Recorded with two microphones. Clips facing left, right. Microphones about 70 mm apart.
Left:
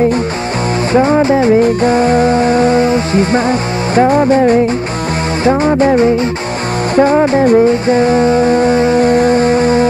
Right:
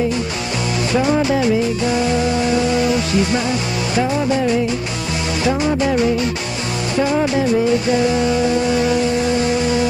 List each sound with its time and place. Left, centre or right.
0.9 s music: left